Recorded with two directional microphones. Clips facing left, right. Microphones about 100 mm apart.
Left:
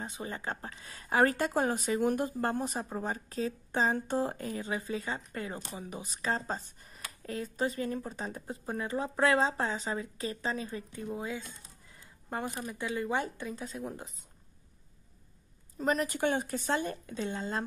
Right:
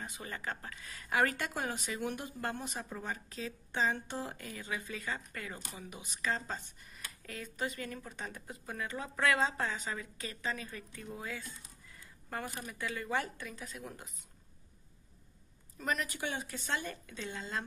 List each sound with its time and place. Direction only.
0.0 s speech: 25° left (ahead or behind)
15.8 s speech: 30° left (ahead or behind)
16.1 s speech: 45° left (ahead or behind)